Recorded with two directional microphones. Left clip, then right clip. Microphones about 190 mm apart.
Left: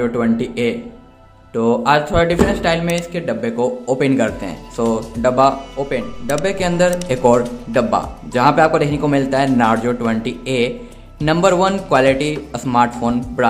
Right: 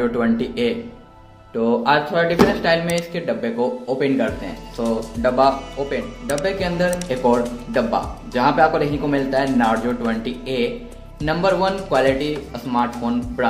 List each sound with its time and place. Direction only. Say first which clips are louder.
0.0 s speech: left 2 dB; 15° left (ahead or behind); by 12.9 s 35° left (ahead or behind)